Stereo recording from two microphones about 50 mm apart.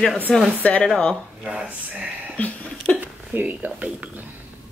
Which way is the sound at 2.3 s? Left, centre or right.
Left.